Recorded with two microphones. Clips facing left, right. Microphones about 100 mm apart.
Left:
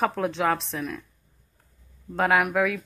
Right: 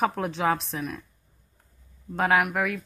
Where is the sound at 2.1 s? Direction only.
Centre (ahead or behind).